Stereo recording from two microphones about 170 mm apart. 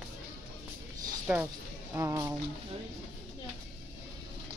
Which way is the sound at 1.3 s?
10° right (ahead or behind).